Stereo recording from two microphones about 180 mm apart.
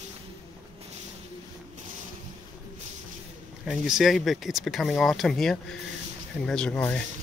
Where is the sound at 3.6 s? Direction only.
Centre (ahead or behind).